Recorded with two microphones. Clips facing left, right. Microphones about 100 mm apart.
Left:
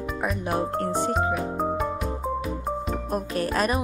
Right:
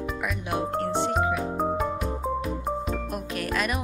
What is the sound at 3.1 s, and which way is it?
Music, 35° left (ahead or behind).